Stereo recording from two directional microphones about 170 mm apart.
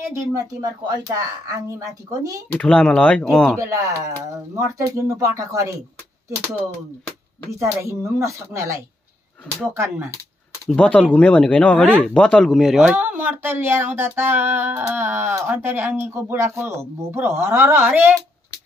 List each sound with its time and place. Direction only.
0.1 s speech: 20° right (ahead or behind)
2.5 s speech: 5° left (ahead or behind)
3.5 s speech: 15° right (ahead or behind)
7.6 s speech: 15° right (ahead or behind)
9.5 s speech: 5° left (ahead or behind)
9.8 s speech: 15° right (ahead or behind)
10.7 s speech: 5° left (ahead or behind); by 18.1 s 10° right (ahead or behind)